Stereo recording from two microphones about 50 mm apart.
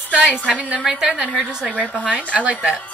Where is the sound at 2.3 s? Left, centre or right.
Right.